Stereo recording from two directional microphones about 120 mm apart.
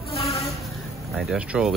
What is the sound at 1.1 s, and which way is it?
Speech, 5° right (ahead or behind).